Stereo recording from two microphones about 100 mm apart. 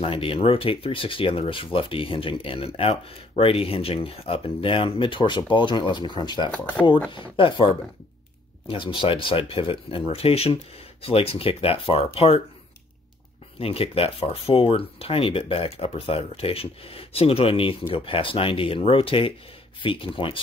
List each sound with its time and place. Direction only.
0.0 s speech: 65° left (ahead or behind); by 6.5 s 50° left (ahead or behind)
6.5 s speech: 15° left (ahead or behind)
7.3 s speech: 55° left (ahead or behind); by 12.4 s 75° left (ahead or behind)
13.6 s speech: 75° left (ahead or behind)